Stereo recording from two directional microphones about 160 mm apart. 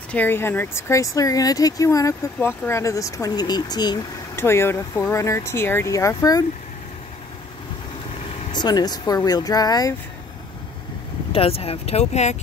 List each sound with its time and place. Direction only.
0.1 s speech: 10° left (ahead or behind)
4.4 s speech: 15° left (ahead or behind)
8.5 s speech: 25° left (ahead or behind)
11.3 s speech: 35° left (ahead or behind)